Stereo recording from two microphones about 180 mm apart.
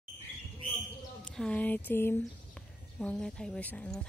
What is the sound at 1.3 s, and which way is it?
A woman's voice, 5° left (ahead or behind).